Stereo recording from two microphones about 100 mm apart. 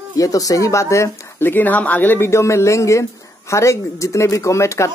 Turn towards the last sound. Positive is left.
turn(degrees=30)  # may be behind; listen again after turning